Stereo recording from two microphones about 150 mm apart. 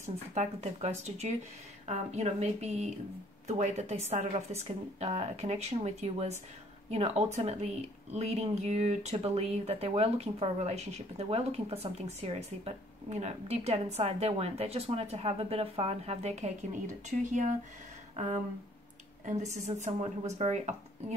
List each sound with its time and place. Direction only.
0.3 s speech: 50° right (ahead or behind)
19.2 s speech: 55° right (ahead or behind)